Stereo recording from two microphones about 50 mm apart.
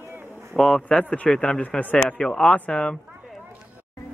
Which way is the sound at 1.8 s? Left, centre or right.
Left.